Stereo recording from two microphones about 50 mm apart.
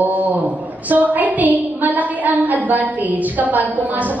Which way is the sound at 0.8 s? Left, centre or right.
Right.